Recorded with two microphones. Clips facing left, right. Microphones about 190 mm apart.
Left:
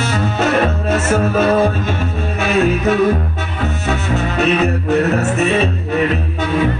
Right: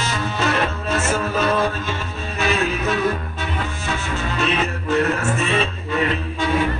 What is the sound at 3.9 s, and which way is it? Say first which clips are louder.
Music: left 7 dB; 60° left (ahead or behind).